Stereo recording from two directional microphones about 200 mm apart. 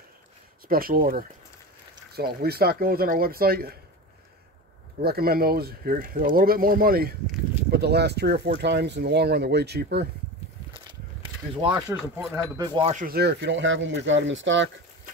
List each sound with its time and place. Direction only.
0.7 s speech: 45° right (ahead or behind)
2.4 s speech: 50° right (ahead or behind)
4.9 s speech: 50° right (ahead or behind)
11.9 s speech: 5° right (ahead or behind)
12.5 s speech: 20° right (ahead or behind)
12.8 s speech: 40° right (ahead or behind); by 14.7 s 65° right (ahead or behind)